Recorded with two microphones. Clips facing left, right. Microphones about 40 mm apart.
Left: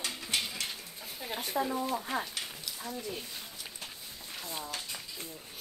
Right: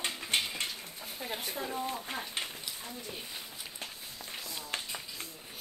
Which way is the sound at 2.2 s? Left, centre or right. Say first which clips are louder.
Right 1 dB; right.